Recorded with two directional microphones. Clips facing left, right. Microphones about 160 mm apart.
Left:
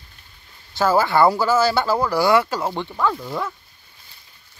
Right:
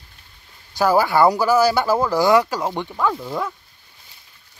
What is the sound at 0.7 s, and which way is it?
Speech, 15° right (ahead or behind).